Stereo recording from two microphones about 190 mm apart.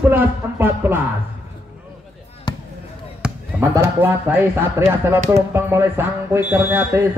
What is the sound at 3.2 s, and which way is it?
Speech, 15° right (ahead or behind).